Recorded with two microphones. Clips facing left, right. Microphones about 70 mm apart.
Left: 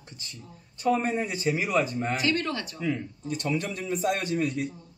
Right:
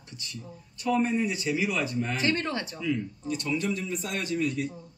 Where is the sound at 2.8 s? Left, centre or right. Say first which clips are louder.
Even; left.